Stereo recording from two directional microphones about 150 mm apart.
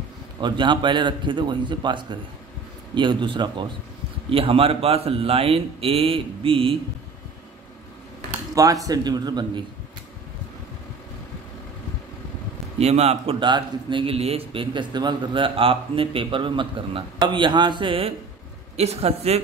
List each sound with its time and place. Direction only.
0.4 s a man's voice: 30° right (ahead or behind)
8.8 s a man's voice: 25° right (ahead or behind)
12.7 s a man's voice: 45° right (ahead or behind)
13.4 s a man's voice: 30° right (ahead or behind)